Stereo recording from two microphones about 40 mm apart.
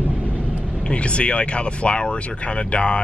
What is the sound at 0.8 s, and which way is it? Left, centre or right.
Speech, left.